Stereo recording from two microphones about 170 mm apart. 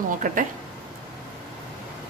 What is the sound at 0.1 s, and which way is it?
Speech, 50° right (ahead or behind).